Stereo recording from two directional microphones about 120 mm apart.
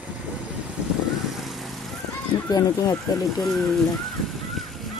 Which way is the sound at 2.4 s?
35° left (ahead or behind).